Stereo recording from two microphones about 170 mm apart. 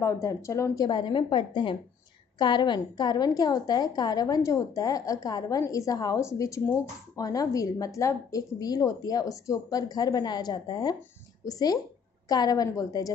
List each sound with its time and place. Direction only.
0.0 s a woman's voice: 20° left (ahead or behind)